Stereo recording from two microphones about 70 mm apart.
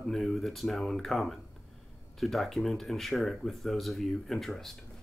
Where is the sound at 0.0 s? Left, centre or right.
Centre.